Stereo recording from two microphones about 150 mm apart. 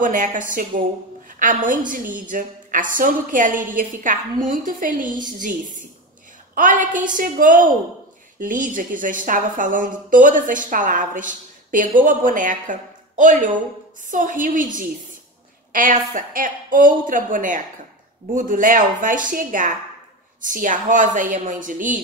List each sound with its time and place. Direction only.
0.0 s a woman's voice: 60° right (ahead or behind)
15.7 s a woman's voice: 65° right (ahead or behind)